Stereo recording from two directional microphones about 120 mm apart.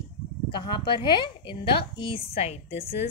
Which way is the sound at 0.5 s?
40° left (ahead or behind).